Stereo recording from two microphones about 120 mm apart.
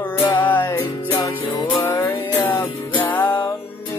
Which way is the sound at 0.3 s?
15° left (ahead or behind).